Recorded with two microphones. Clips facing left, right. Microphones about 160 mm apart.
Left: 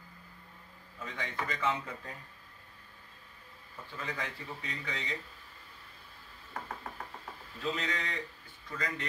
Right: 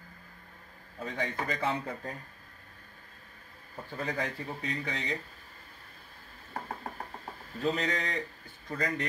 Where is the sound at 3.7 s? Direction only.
40° right (ahead or behind).